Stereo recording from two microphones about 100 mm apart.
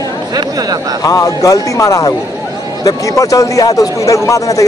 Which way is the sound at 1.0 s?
35° left (ahead or behind).